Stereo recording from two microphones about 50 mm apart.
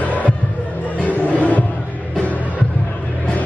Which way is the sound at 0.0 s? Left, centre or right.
Left.